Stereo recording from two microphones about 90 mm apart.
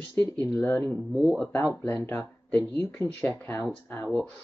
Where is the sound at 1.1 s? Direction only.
5° right (ahead or behind).